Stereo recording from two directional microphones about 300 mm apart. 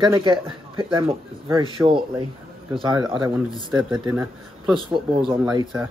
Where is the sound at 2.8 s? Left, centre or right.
Centre.